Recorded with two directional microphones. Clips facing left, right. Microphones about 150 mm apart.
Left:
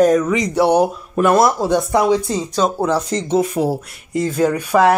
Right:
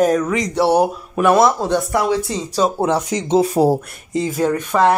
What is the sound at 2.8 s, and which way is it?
Speech, 25° right (ahead or behind).